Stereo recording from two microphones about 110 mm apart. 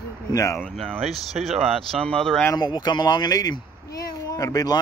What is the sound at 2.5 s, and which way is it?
Speech, 40° left (ahead or behind).